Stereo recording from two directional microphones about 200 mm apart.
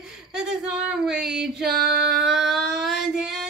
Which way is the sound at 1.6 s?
50° right (ahead or behind).